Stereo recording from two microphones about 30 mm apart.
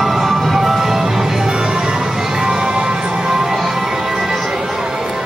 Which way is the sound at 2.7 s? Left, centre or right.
Right.